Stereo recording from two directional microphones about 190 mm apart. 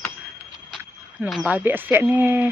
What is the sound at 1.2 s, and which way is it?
Speech, 5° right (ahead or behind).